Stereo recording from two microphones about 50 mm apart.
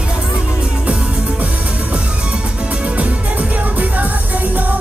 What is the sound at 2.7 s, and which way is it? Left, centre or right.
Music, right.